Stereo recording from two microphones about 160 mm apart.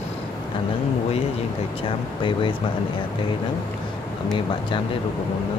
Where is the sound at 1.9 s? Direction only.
30° left (ahead or behind).